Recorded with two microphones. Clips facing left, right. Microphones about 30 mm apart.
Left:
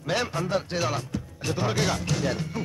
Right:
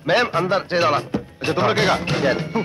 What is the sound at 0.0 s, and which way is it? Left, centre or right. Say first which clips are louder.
Music: right 9 dB; right.